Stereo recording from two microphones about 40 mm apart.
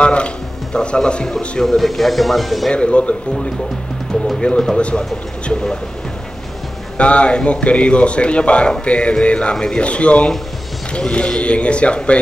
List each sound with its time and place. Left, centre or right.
0.0 s music: left
0.7 s speech: left
1.6 s speech: centre
2.7 s speech: left
4.4 s speech: centre
5.5 s speech: centre
7.0 s speech: left
8.8 s music: left
9.2 s speech: left